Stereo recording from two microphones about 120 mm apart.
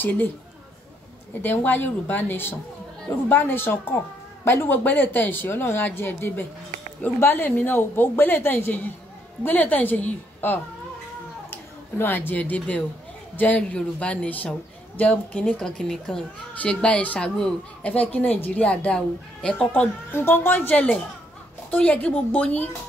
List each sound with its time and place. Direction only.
0.0 s a woman's voice: 15° left (ahead or behind)
1.4 s a woman's voice: 15° left (ahead or behind)